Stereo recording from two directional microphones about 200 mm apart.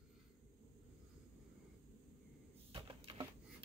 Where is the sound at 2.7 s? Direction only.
25° right (ahead or behind).